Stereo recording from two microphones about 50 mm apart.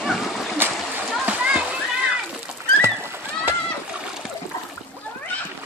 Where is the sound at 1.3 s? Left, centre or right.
Right.